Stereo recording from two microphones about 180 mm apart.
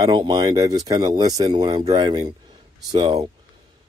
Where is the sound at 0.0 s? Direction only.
25° right (ahead or behind).